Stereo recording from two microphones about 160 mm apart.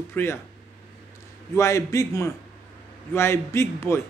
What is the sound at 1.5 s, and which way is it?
A man's voice, 20° left (ahead or behind).